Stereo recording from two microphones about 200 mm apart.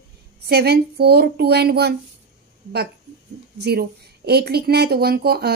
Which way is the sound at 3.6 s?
55° right (ahead or behind).